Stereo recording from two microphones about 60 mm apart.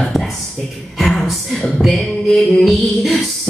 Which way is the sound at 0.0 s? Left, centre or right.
Centre.